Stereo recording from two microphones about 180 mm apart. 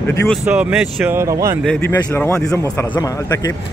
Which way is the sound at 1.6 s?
10° left (ahead or behind).